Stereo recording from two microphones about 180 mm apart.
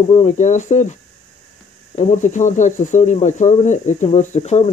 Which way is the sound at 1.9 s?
45° left (ahead or behind).